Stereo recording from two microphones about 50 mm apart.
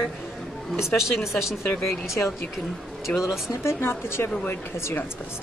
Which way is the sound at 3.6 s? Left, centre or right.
Left.